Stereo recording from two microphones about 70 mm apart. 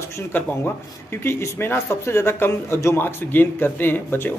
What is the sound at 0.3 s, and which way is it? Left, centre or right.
Speech, left.